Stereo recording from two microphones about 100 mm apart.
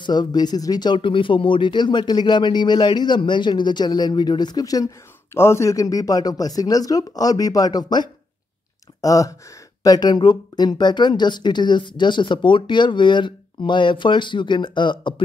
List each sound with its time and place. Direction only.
0.0 s speech: 45° left (ahead or behind)
5.3 s speech: 25° left (ahead or behind); by 15.2 s 50° left (ahead or behind)